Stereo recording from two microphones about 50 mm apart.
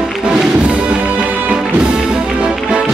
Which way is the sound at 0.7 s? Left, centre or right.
Right.